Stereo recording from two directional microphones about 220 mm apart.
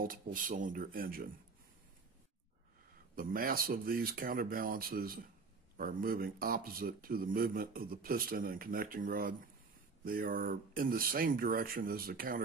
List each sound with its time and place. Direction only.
0.0 s speech: 40° right (ahead or behind)
3.2 s speech: 40° right (ahead or behind)